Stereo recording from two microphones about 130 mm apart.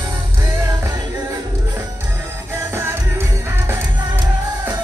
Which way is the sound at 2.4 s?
20° right (ahead or behind).